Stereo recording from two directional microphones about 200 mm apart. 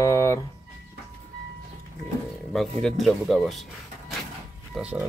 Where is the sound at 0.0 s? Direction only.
15° left (ahead or behind).